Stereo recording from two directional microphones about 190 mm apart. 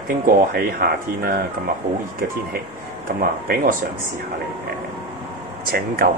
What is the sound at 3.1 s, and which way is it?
Speech, 50° right (ahead or behind).